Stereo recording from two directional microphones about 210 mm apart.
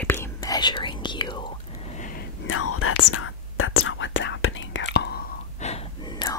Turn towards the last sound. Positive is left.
turn(degrees=20)  # may be behind; listen again after turning